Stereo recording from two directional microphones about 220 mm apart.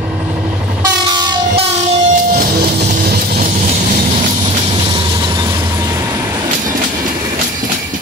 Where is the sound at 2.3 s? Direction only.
35° right (ahead or behind).